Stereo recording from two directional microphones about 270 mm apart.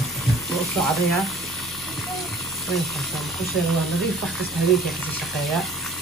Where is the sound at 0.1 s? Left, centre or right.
Centre.